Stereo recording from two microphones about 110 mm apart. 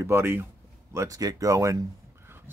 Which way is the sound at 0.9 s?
30° right (ahead or behind).